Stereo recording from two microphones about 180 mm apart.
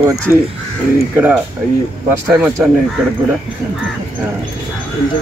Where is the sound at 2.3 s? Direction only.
5° right (ahead or behind).